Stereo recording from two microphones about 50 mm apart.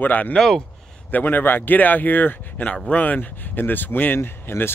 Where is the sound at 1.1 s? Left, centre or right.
Left.